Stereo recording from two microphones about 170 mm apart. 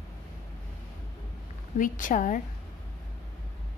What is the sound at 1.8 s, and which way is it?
Speech, 50° left (ahead or behind).